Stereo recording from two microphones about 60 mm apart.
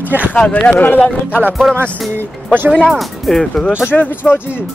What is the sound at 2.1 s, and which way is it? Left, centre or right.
Speech, right.